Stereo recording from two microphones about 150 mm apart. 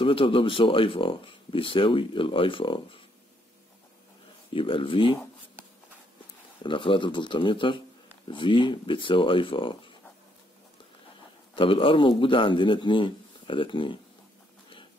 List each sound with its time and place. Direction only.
0.0 s speech: 35° left (ahead or behind)
4.6 s speech: 35° left (ahead or behind)
6.6 s speech: 35° left (ahead or behind)
11.5 s speech: 35° left (ahead or behind)